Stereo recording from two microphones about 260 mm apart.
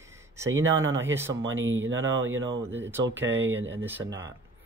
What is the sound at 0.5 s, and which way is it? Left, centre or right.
Speech, right.